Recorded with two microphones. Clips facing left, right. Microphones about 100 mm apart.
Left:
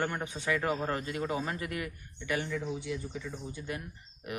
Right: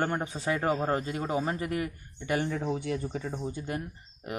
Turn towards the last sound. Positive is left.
turn(degrees=-35)  # may be behind; listen again after turning